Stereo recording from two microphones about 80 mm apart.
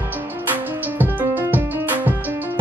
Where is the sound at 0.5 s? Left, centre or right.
Right.